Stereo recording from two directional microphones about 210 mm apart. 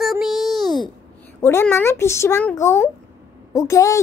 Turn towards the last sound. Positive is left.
turn(degrees=15)  # may be behind; listen again after turning